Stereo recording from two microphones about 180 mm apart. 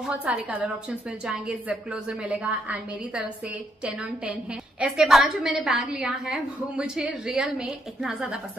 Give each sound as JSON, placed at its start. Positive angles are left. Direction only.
{"t": 0.0, "sound": "a woman's voice", "side_deg": -10}